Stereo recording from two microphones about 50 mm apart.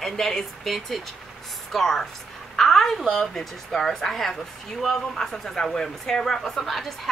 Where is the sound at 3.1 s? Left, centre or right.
Centre.